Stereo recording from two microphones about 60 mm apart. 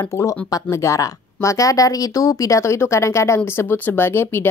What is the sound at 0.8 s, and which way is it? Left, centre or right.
Speech, left.